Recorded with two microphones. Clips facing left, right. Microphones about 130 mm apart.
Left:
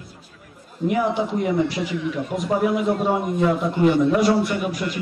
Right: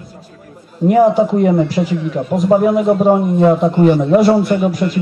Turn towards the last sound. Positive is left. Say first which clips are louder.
# right 9 dB
turn(degrees=-40)  # may be behind; listen again after turning